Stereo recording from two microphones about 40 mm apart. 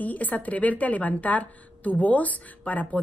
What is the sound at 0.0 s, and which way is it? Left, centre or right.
A woman's voice, left.